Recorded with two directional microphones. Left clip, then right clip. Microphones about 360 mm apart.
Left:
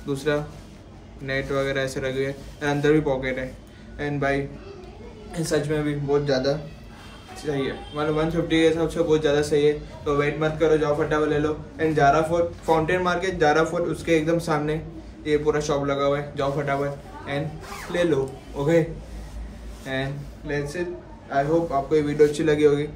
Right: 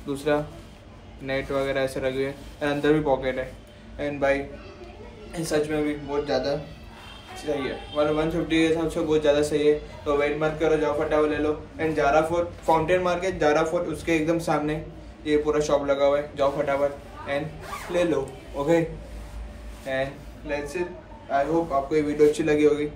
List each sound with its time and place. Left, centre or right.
0.0 s a man's voice: centre
19.9 s a man's voice: centre